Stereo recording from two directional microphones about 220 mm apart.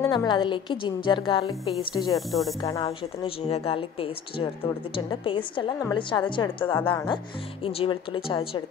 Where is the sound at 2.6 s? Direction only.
20° left (ahead or behind).